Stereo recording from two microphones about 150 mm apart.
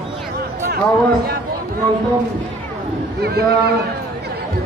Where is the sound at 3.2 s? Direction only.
90° right.